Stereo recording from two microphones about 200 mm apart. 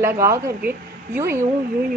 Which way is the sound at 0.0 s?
15° right (ahead or behind).